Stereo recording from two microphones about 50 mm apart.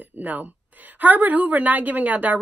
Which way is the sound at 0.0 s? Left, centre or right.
Right.